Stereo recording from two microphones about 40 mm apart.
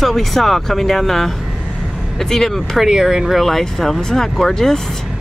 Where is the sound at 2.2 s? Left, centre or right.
Centre.